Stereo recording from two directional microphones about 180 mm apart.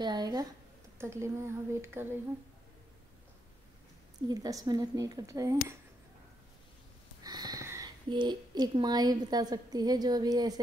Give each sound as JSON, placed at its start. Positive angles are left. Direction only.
{"t": 0.0, "sound": "a woman's voice", "side_deg": -25}
{"t": 4.3, "sound": "a woman's voice", "side_deg": -20}
{"t": 7.2, "sound": "speech", "side_deg": -20}